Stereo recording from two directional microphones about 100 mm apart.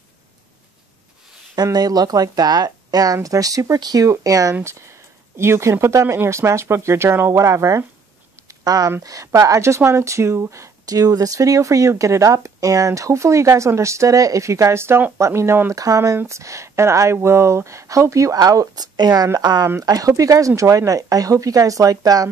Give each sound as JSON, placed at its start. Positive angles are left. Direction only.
{"t": 1.5, "sound": "speech", "side_deg": -40}
{"t": 8.5, "sound": "a sound", "side_deg": -35}
{"t": 9.0, "sound": "speech", "side_deg": -35}